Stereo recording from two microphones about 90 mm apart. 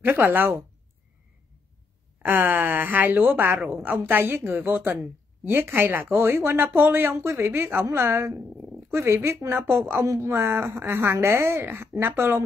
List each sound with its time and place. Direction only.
0.0 s speech: 25° right (ahead or behind)
2.2 s speech: 20° right (ahead or behind)